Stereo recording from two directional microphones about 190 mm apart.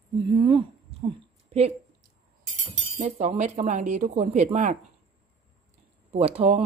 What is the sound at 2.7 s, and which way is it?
Speech, 40° right (ahead or behind).